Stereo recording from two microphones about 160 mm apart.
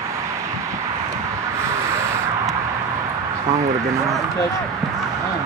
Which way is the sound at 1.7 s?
15° right (ahead or behind).